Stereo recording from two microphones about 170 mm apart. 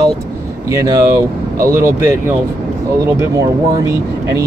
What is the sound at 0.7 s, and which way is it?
Speech, 20° right (ahead or behind).